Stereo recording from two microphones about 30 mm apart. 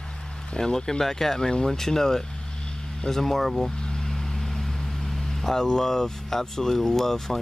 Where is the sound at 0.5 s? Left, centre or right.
Centre.